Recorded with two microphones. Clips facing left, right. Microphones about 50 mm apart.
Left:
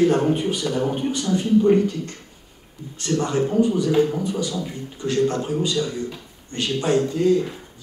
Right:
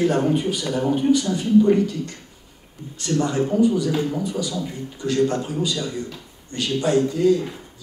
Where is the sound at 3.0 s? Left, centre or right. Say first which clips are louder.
Even; left.